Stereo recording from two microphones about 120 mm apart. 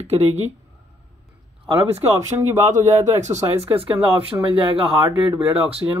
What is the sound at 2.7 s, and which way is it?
Speech, 75° right (ahead or behind).